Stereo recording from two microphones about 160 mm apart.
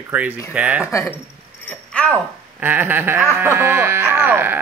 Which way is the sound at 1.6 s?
5° left (ahead or behind).